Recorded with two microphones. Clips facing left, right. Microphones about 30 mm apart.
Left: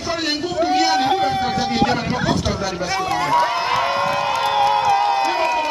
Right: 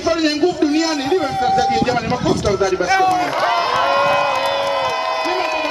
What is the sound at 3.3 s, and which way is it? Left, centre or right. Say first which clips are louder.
Run: even; right.